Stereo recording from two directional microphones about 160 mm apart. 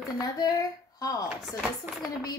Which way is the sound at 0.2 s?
20° left (ahead or behind).